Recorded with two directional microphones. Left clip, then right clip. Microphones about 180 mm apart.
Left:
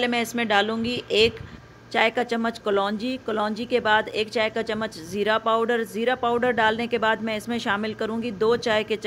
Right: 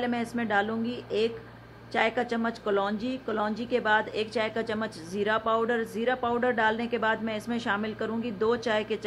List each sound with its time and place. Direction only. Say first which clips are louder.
0.0 s a woman's voice: left 6 dB; 15° left (ahead or behind)